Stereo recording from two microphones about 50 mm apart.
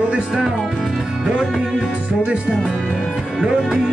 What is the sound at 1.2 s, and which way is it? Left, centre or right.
Music, centre.